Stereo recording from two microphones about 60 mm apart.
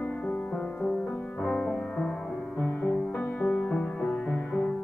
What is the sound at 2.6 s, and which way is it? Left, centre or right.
Music, left.